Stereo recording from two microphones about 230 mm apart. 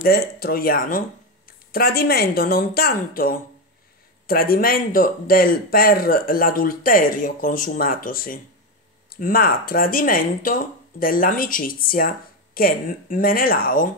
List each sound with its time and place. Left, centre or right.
0.1 s speech: left